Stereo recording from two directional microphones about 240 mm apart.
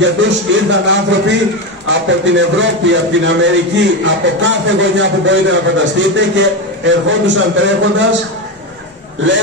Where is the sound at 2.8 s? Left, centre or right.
Right.